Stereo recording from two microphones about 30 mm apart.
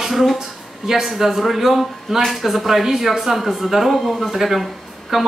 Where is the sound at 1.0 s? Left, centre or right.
Centre.